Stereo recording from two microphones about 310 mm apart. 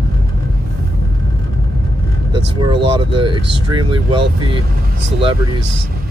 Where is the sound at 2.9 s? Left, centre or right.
Centre.